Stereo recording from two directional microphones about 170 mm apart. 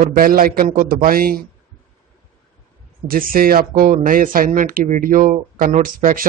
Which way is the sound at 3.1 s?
55° right (ahead or behind).